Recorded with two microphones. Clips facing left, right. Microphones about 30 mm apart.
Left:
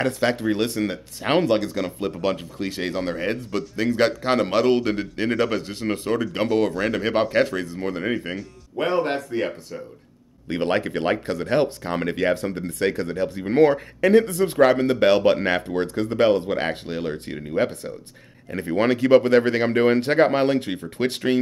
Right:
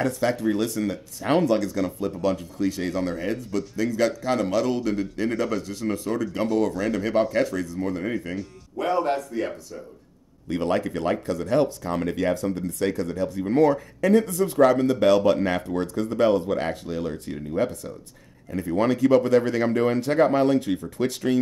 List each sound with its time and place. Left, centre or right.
0.0 s speech: left